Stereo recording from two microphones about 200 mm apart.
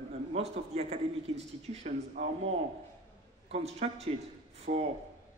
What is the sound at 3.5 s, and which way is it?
A man's voice, 30° right (ahead or behind).